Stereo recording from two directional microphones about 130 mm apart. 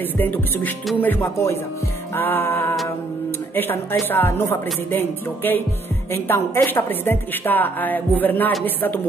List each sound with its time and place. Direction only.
0.2 s a woman's voice: 15° left (ahead or behind)